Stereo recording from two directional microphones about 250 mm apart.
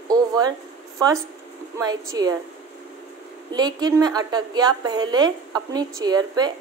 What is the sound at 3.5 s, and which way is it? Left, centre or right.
A woman's voice, centre.